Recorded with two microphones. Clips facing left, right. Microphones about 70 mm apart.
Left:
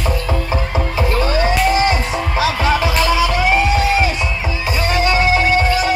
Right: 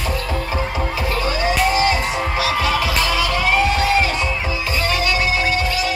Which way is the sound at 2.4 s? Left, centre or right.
Left.